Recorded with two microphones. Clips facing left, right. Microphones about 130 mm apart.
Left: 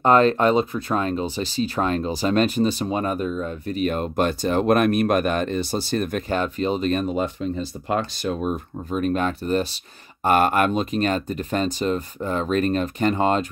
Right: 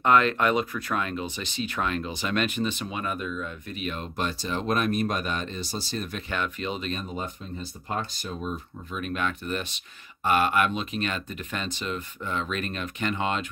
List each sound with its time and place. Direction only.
0.0 s speech: 35° left (ahead or behind); by 6.2 s 55° left (ahead or behind)
6.3 s speech: 35° left (ahead or behind)
7.9 s speech: 85° left; by 8.5 s 70° left (ahead or behind)
8.9 s speech: 40° left (ahead or behind)
10.2 s speech: 45° left (ahead or behind)